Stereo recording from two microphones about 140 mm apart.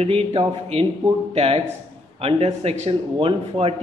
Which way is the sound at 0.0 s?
45° right (ahead or behind).